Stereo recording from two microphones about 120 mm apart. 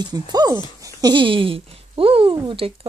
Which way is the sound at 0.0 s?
35° right (ahead or behind).